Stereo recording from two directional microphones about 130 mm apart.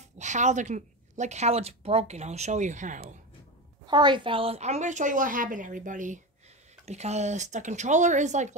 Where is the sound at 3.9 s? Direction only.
35° right (ahead or behind).